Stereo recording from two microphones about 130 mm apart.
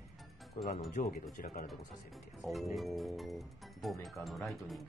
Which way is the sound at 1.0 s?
90° left.